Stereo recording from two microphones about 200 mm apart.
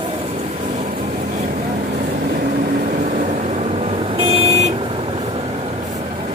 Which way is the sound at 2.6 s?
40° right (ahead or behind).